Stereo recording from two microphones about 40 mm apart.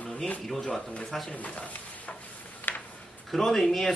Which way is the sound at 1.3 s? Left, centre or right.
Left.